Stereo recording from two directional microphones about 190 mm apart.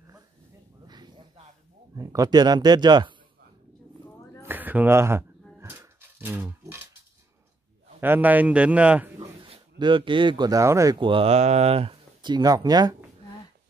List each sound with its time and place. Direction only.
0.8 s a sound: 20° right (ahead or behind)
2.0 s speech: 20° right (ahead or behind)
4.4 s a sound: 10° right (ahead or behind)
5.6 s dog: 10° right (ahead or behind)
8.0 s a man's voice: 10° right (ahead or behind)
9.4 s speech: 25° right (ahead or behind)